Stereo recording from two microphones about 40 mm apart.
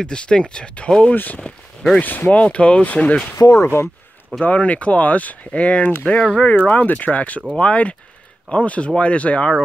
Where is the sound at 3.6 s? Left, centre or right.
Left.